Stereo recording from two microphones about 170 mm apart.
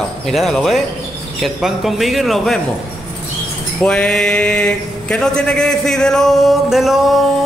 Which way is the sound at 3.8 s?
5° left (ahead or behind).